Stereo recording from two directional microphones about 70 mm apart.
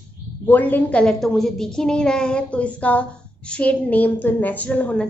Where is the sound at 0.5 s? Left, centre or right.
Left.